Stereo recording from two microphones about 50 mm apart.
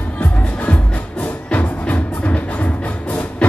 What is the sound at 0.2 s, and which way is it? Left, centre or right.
Music, left.